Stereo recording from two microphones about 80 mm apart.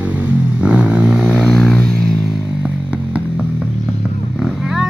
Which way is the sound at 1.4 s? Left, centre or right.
Centre.